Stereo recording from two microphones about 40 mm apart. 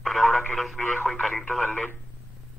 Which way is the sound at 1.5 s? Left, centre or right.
Left.